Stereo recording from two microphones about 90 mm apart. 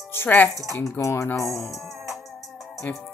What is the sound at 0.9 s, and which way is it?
Speech, 35° left (ahead or behind).